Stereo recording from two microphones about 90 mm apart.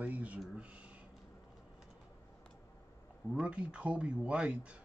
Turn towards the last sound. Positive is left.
turn(degrees=-15)  # may be behind; listen again after turning